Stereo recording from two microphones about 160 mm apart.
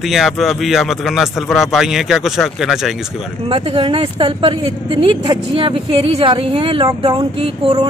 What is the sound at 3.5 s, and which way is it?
Speech, 35° right (ahead or behind).